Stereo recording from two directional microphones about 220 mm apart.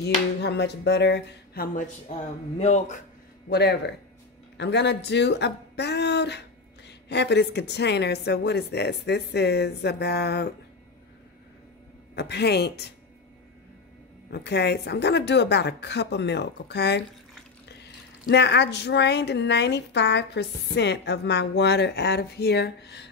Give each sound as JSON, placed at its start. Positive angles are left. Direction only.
{"t": 0.0, "sound": "speech", "side_deg": 50}
{"t": 2.6, "sound": "speech", "side_deg": 30}
{"t": 3.4, "sound": "speech", "side_deg": 50}
{"t": 12.2, "sound": "speech", "side_deg": 50}
{"t": 14.3, "sound": "speech", "side_deg": 50}